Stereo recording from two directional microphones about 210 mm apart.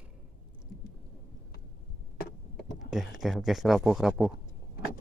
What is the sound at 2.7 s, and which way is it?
Speech, centre (ahead or behind).